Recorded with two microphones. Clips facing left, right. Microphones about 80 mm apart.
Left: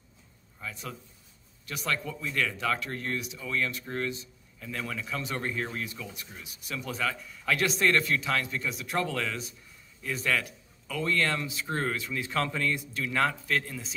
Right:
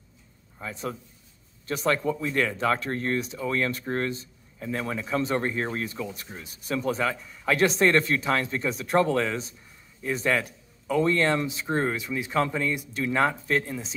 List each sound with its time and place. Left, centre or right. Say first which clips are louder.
0.6 s speech: right 6 dB; right